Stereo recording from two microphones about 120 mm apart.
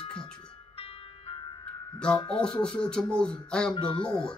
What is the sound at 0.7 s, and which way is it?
Music, 55° left (ahead or behind).